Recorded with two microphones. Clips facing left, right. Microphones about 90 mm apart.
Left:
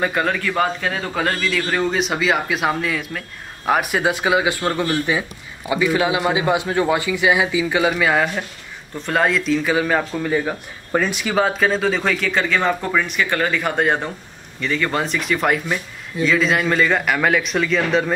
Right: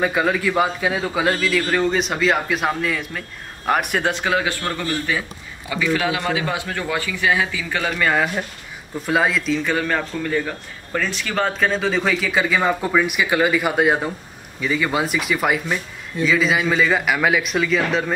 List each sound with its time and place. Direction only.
0.0 s a man's voice: 5° right (ahead or behind)